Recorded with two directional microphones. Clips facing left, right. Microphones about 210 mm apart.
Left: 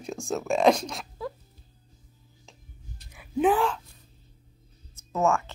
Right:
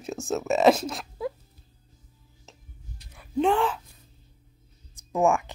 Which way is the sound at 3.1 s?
5° left (ahead or behind).